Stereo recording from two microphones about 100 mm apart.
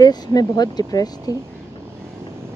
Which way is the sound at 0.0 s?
40° left (ahead or behind).